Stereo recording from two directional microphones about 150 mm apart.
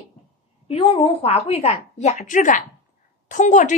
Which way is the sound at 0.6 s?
35° left (ahead or behind).